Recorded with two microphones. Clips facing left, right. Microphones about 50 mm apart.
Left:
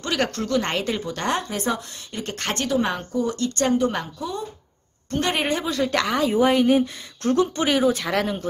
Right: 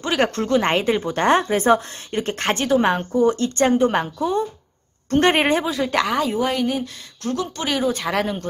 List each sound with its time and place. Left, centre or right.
0.0 s a woman's voice: right
5.7 s speech: centre
6.3 s speech: centre
7.2 s speech: left
7.6 s speech: centre